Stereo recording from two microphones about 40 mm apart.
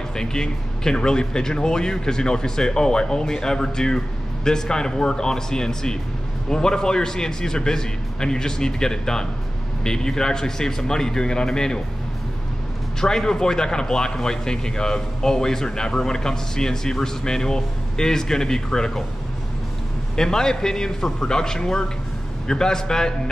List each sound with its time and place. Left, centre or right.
0.1 s a man's voice: centre
13.0 s a man's voice: centre
20.2 s a man's voice: centre